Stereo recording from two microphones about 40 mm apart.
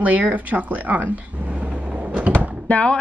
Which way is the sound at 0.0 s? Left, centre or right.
Right.